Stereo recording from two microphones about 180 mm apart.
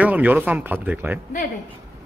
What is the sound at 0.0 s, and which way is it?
Speech, 10° right (ahead or behind).